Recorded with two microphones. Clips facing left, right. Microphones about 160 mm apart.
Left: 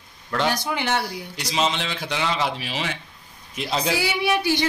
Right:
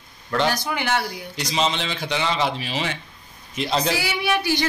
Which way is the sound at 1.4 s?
Centre (ahead or behind).